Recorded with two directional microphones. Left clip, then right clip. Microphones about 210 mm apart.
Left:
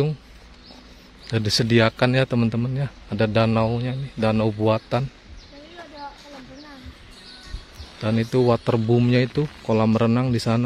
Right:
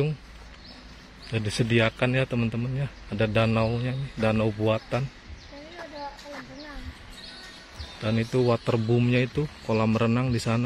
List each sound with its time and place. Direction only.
1.3 s a man's voice: 30° left (ahead or behind)
8.0 s a man's voice: 20° left (ahead or behind)